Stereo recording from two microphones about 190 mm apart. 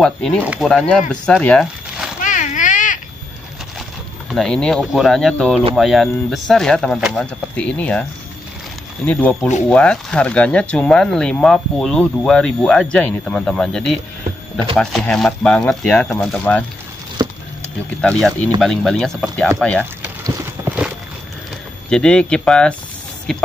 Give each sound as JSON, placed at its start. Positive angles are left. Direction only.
{"t": 0.0, "sound": "speech", "side_deg": 5}
{"t": 0.4, "sound": "speech", "side_deg": -10}
{"t": 0.7, "sound": "speech", "side_deg": 5}
{"t": 2.2, "sound": "a sound", "side_deg": 40}
{"t": 4.3, "sound": "speech", "side_deg": 5}
{"t": 9.0, "sound": "speech", "side_deg": 5}
{"t": 17.2, "sound": "a sound", "side_deg": -20}
{"t": 18.0, "sound": "speech", "side_deg": 5}
{"t": 20.0, "sound": "a sound", "side_deg": -10}
{"t": 21.8, "sound": "speech", "side_deg": 5}